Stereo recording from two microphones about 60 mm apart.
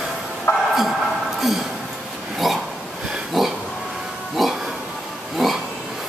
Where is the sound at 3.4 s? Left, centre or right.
Centre.